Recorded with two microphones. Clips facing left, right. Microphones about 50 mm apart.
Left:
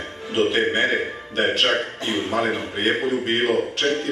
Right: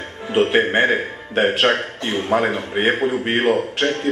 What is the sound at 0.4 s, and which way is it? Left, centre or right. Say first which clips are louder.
A man's voice: right 4 dB; right.